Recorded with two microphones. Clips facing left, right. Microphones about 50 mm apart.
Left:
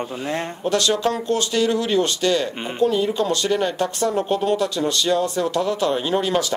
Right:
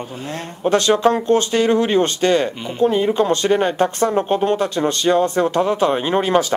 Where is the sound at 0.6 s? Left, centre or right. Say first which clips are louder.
Right 6 dB; right.